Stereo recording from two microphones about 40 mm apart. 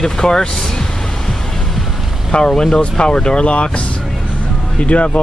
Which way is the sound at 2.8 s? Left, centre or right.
Left.